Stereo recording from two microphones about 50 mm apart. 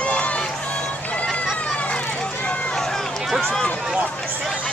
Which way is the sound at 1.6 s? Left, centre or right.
Left.